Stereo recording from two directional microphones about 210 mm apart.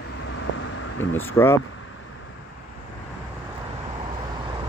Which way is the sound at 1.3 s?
10° left (ahead or behind).